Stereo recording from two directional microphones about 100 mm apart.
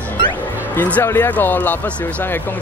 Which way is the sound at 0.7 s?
15° left (ahead or behind).